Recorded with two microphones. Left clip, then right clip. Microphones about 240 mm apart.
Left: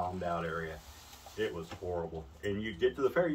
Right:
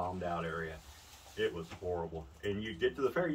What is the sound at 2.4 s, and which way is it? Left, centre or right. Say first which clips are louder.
Speech: left 2 dB; centre.